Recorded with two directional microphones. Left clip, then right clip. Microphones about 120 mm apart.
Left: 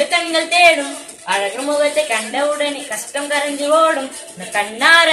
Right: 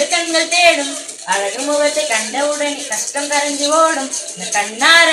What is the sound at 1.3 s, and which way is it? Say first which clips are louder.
Speech: right 1 dB; 10° left (ahead or behind).